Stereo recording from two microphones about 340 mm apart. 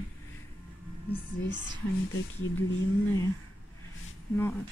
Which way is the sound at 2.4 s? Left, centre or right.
Left.